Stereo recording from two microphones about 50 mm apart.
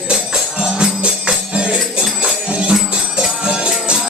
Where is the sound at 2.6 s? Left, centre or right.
Centre.